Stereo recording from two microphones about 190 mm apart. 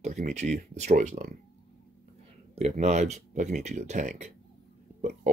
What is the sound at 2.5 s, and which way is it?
Speech, 35° right (ahead or behind).